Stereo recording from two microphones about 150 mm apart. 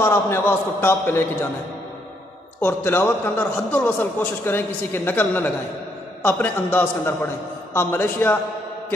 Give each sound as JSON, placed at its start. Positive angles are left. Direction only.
{"t": 0.0, "sound": "a man's voice", "side_deg": 15}
{"t": 2.6, "sound": "a man's voice", "side_deg": 15}